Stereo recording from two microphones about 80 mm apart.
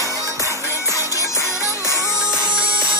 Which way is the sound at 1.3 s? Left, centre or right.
Left.